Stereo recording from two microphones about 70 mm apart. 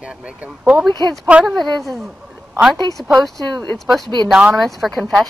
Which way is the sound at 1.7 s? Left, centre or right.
Centre.